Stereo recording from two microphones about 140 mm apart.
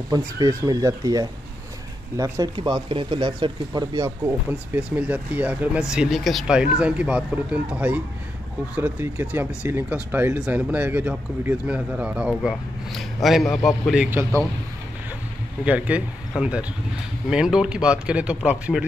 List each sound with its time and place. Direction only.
0.1 s speech: 25° right (ahead or behind)
4.5 s speech: 10° right (ahead or behind)
15.6 s speech: 10° right (ahead or behind)